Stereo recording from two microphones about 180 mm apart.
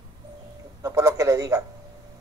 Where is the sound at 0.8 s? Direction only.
15° right (ahead or behind).